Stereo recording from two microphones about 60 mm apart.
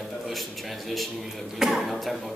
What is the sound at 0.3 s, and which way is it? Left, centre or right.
A man's voice, centre.